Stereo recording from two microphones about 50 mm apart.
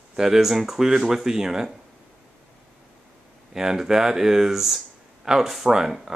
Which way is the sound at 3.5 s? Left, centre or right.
Centre.